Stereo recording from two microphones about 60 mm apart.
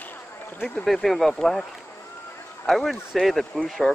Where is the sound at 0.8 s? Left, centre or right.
Centre.